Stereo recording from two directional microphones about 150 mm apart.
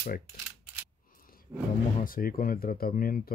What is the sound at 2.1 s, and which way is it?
Speech, 70° left (ahead or behind).